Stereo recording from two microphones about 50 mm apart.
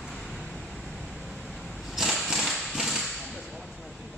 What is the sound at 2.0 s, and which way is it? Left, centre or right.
Horse, centre.